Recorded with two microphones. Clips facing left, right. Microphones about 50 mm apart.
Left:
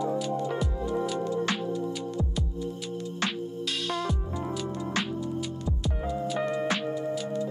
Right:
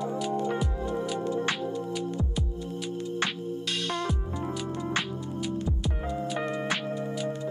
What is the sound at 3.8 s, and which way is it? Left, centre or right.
Music, centre.